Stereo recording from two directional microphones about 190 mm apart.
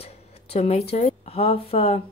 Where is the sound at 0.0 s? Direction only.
30° left (ahead or behind).